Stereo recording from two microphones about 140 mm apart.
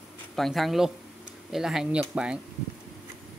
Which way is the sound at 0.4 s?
Centre (ahead or behind).